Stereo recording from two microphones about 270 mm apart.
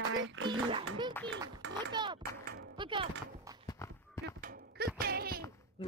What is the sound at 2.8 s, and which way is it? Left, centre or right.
Music, centre.